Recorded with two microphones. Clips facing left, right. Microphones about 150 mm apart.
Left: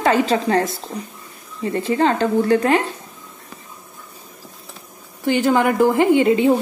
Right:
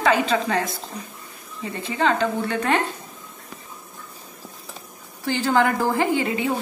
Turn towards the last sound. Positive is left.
turn(degrees=25)  # may be behind; listen again after turning